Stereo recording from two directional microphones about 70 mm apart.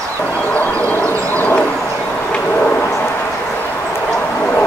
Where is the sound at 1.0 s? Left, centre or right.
Left.